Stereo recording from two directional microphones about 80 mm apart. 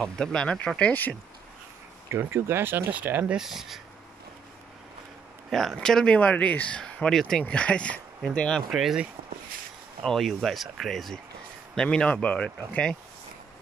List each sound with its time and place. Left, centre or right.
0.0 s speech: centre
2.0 s speech: right
3.3 s speech: centre
5.5 s speech: centre
8.6 s speech: centre
10.0 s speech: centre
11.7 s speech: centre